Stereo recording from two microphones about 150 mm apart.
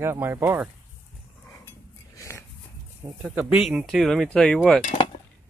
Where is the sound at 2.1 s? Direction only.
20° left (ahead or behind).